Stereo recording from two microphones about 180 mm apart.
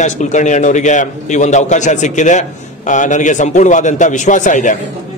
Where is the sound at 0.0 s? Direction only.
40° left (ahead or behind).